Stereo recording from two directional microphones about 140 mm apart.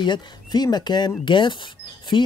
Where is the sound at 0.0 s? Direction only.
30° left (ahead or behind).